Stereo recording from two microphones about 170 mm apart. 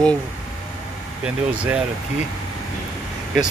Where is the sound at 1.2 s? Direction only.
10° right (ahead or behind).